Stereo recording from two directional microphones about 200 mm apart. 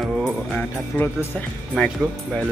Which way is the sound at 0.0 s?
5° left (ahead or behind).